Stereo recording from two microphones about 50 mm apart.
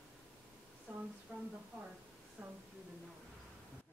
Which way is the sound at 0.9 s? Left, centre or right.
Right.